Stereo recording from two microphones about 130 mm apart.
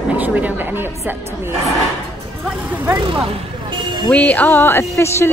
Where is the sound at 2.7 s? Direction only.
15° right (ahead or behind).